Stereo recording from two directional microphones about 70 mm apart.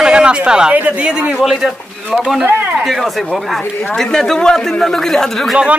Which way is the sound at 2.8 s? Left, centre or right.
Centre.